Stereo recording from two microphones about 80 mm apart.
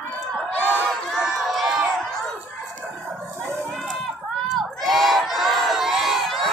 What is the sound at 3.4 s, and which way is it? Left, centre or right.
Run, right.